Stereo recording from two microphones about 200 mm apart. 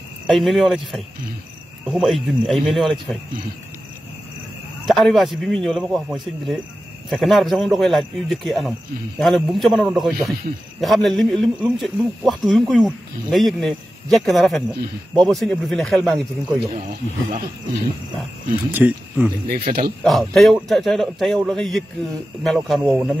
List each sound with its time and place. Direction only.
0.3 s a man's voice: centre (ahead or behind)
4.8 s a man's voice: centre (ahead or behind)
16.5 s speech: 40° right (ahead or behind)
18.7 s speech: 10° right (ahead or behind)
19.4 s speech: 50° right (ahead or behind)
20.0 s a man's voice: centre (ahead or behind)